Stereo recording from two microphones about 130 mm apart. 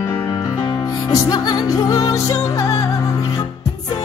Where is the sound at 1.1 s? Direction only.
30° left (ahead or behind).